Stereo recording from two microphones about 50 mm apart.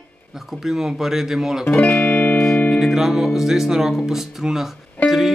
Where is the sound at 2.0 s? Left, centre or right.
Left.